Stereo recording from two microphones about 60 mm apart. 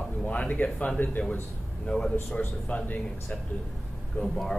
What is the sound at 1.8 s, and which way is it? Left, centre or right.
Speech, centre.